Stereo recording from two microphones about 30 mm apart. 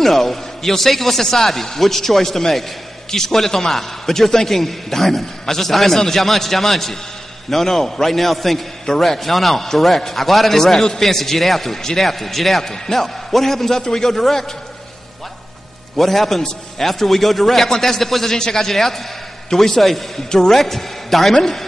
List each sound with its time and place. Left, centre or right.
0.0 s a man's voice: centre
12.6 s speech: left
12.9 s a man's voice: centre
16.0 s a man's voice: centre
18.4 s speech: centre
18.7 s a man's voice: centre
20.2 s speech: centre
20.5 s a man's voice: centre